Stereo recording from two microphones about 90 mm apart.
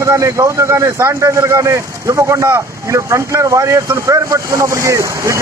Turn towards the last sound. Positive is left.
turn(degrees=-35)  # may be behind; listen again after turning